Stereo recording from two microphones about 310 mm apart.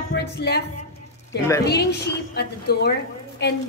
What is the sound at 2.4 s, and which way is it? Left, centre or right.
A woman's voice, left.